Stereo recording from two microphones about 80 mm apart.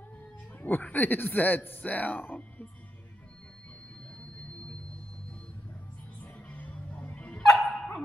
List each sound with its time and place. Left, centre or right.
0.6 s speech: left
6.2 s dog: centre